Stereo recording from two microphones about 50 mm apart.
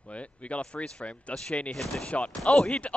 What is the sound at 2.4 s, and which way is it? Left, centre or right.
Speech, centre.